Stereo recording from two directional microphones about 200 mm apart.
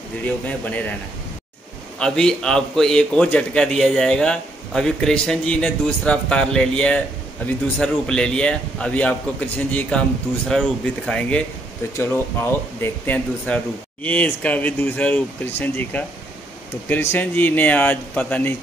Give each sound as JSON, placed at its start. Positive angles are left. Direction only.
{"t": 0.2, "sound": "speech", "side_deg": 5}
{"t": 2.0, "sound": "a man's voice", "side_deg": 5}